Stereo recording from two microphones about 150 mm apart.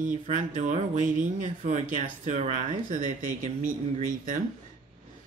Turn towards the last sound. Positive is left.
turn(degrees=-60)  # may be behind; listen again after turning